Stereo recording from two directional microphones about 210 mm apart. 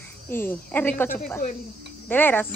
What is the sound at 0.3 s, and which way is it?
Speech, 10° left (ahead or behind).